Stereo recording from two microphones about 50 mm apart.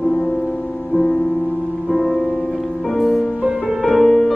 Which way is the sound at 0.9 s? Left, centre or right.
Centre.